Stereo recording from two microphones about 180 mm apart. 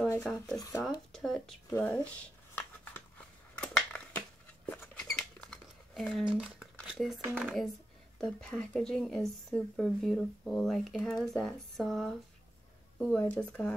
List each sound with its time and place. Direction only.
0.2 s a woman's voice: 5° left (ahead or behind)
0.6 s speech: 20° left (ahead or behind)
1.1 s a woman's voice: centre (ahead or behind)
1.7 s a sound: 10° left (ahead or behind)
4.6 s rodents: 10° left (ahead or behind)
7.3 s a woman's voice: centre (ahead or behind)